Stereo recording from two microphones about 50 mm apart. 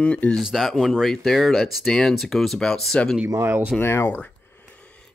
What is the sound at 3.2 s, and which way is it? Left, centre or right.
Speech, right.